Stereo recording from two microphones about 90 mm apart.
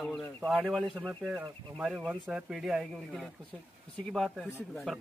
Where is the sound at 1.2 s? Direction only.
15° right (ahead or behind).